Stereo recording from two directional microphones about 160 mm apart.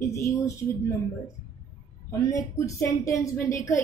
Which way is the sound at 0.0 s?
20° left (ahead or behind).